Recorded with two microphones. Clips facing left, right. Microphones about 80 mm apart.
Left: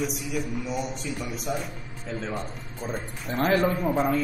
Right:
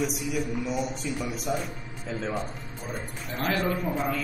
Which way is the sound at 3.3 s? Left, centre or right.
Left.